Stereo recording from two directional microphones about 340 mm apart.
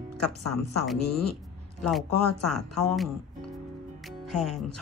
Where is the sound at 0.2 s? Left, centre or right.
Centre.